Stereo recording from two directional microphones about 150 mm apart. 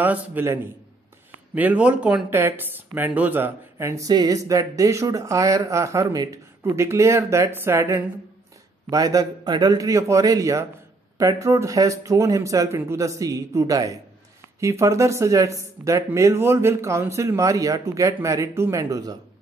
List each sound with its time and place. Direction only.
0.0 s a man's voice: 10° right (ahead or behind)